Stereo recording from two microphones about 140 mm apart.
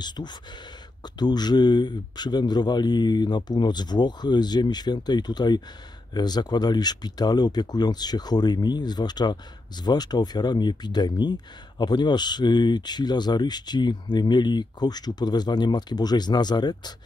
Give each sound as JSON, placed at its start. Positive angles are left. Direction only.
{"t": 0.0, "sound": "speech", "side_deg": 30}